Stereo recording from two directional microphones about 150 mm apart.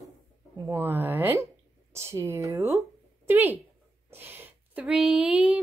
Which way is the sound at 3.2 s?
10° right (ahead or behind).